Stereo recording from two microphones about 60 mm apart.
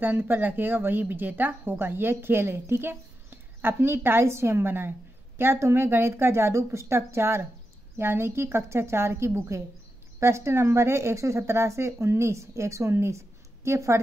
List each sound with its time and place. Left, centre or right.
0.0 s speech: right